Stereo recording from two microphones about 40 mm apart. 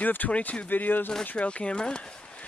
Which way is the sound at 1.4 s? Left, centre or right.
Left.